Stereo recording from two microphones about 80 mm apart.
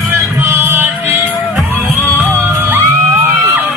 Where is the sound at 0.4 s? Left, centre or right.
Right.